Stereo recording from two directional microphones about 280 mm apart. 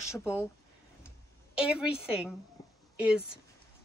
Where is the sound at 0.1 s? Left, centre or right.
Centre.